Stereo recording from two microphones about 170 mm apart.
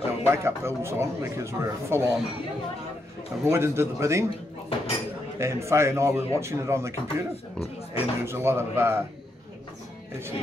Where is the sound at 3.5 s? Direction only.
15° right (ahead or behind).